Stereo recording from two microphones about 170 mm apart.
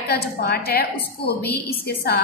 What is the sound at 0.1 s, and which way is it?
A woman's voice, 70° left (ahead or behind).